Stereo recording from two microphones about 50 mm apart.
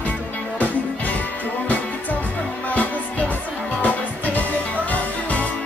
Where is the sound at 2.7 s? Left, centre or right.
Left.